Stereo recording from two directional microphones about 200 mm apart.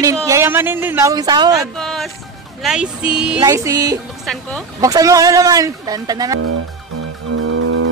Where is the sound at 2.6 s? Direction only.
5° right (ahead or behind).